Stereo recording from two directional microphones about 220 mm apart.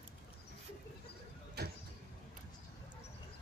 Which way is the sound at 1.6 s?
45° right (ahead or behind).